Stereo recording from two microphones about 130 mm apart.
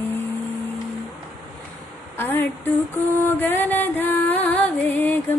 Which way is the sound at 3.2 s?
15° left (ahead or behind).